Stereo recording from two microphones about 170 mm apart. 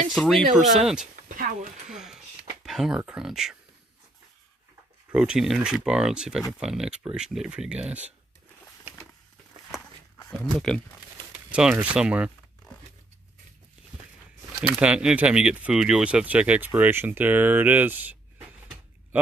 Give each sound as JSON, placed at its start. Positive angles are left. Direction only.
{"t": 0.1, "sound": "speech", "side_deg": 0}
{"t": 1.1, "sound": "speech", "side_deg": -55}
{"t": 1.9, "sound": "speech", "side_deg": -5}
{"t": 5.1, "sound": "speech", "side_deg": -5}
{"t": 10.4, "sound": "speech", "side_deg": 0}
{"t": 14.5, "sound": "speech", "side_deg": -5}